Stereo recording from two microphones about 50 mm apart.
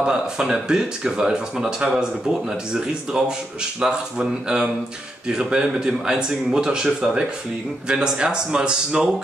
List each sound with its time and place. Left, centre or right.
0.0 s a man's voice: centre